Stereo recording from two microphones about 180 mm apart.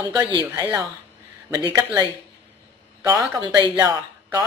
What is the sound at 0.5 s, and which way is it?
Speech, 15° right (ahead or behind).